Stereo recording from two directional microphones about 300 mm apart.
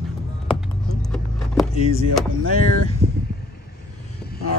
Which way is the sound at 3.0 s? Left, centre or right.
Centre.